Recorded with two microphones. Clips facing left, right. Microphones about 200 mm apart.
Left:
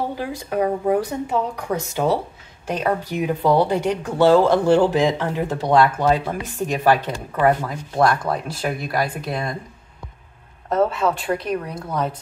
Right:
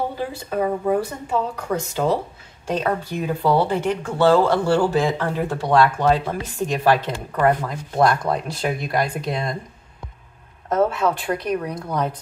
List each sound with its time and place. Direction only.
0.2 s speech: 15° left (ahead or behind)
10.7 s speech: centre (ahead or behind)